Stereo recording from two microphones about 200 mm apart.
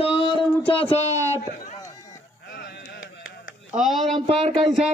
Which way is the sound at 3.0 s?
80° left.